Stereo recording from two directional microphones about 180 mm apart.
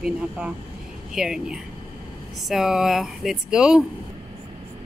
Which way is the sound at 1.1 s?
5° right (ahead or behind).